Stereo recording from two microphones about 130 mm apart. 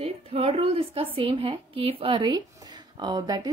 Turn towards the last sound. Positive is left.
turn(degrees=-30)  # may be behind; listen again after turning